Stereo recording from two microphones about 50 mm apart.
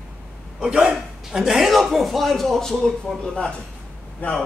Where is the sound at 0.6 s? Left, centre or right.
Centre.